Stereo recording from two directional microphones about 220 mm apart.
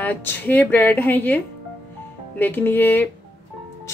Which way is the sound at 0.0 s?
10° left (ahead or behind).